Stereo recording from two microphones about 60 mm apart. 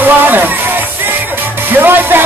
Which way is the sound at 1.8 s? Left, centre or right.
Right.